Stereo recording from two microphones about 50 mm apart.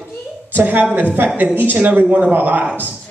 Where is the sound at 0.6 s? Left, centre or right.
Right.